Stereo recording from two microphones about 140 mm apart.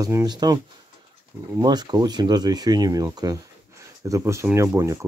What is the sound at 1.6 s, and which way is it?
Speech, 30° right (ahead or behind).